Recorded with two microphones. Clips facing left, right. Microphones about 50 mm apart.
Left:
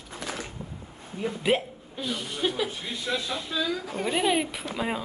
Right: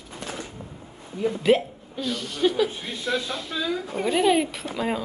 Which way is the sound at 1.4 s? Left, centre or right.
Centre.